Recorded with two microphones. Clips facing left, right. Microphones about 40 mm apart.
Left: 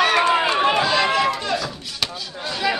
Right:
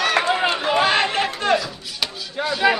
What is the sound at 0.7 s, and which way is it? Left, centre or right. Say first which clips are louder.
Run: even; right.